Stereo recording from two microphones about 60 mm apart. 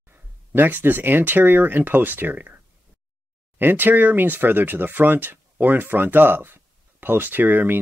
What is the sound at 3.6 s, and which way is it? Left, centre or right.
Speech, right.